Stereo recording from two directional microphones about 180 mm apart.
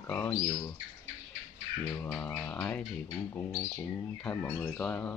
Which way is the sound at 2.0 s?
10° left (ahead or behind).